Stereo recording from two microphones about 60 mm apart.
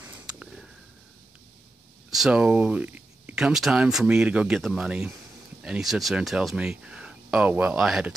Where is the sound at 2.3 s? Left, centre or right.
Centre.